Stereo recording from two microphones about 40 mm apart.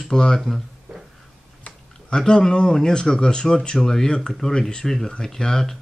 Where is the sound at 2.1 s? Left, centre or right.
Centre.